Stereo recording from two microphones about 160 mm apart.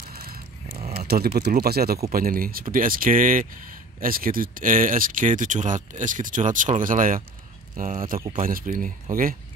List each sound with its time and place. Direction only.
0.1 s vehicle: 65° right (ahead or behind)
1.0 s speech: 75° right (ahead or behind)
2.1 s speech: 65° right (ahead or behind)